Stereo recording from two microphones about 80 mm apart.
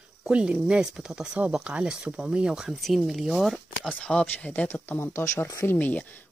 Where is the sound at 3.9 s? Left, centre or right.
Centre; by 5.7 s left.